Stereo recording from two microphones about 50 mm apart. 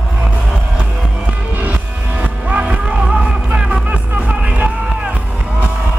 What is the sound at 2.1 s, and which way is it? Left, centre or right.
Music, right.